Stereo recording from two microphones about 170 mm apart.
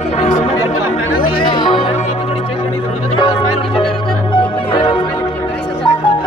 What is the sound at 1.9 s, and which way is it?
Music, 40° left (ahead or behind).